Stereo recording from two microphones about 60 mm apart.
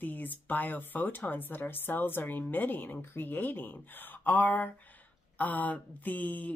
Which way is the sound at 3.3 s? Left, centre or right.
Left.